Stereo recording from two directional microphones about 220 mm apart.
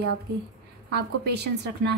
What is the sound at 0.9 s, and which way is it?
A woman's voice, 50° right (ahead or behind).